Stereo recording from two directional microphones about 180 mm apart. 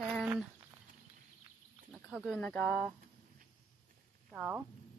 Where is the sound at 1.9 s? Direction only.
Centre (ahead or behind).